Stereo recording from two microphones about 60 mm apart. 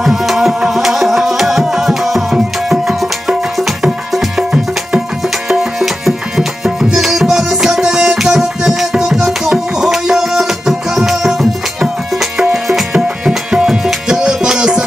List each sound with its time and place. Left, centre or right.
0.0 s music: centre
2.3 s music: centre
3.5 s music: centre
4.4 s music: centre
5.5 s tabla: centre
13.8 s music: centre